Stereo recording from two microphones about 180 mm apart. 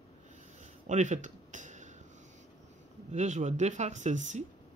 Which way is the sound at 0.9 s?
40° right (ahead or behind).